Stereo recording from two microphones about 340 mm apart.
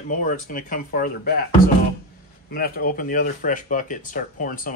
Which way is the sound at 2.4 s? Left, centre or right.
Left.